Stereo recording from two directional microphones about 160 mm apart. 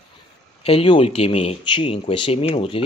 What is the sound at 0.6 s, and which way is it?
Speech, 35° left (ahead or behind).